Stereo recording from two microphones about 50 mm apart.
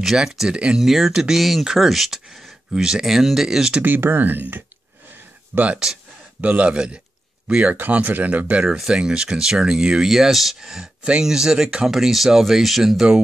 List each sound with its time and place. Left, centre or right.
0.0 s speech: centre
0.5 s a man's voice: right
0.7 s speech: centre
3.8 s speech: right
5.5 s a man's voice: right
8.7 s speech: centre